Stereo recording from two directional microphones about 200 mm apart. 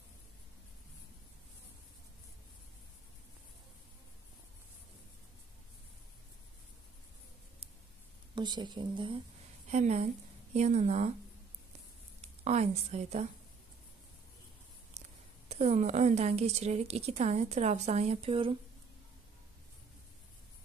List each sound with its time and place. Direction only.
8.4 s a woman's voice: 20° right (ahead or behind)
12.2 s speech: 35° right (ahead or behind)
15.0 s a woman's voice: 35° right (ahead or behind)